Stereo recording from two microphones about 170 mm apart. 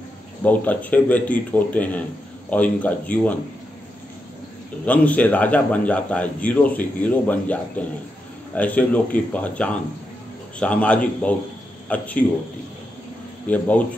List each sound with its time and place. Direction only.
0.4 s a man's voice: 10° left (ahead or behind)
4.8 s a man's voice: 10° left (ahead or behind)
13.5 s a man's voice: 10° left (ahead or behind)